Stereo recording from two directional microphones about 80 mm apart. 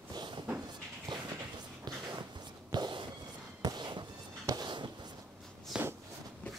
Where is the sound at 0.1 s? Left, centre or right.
Right.